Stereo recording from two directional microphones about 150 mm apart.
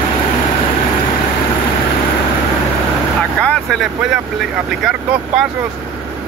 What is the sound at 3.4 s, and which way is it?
Vehicle, 5° left (ahead or behind).